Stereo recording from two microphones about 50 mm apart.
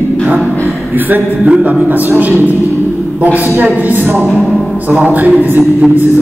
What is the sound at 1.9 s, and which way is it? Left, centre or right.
A man's voice, right.